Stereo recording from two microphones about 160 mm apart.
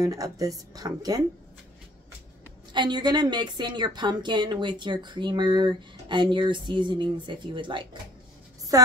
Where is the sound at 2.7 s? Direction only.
30° right (ahead or behind).